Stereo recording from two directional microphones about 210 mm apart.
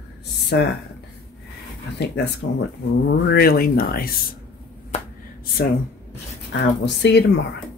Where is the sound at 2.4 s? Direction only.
70° left (ahead or behind).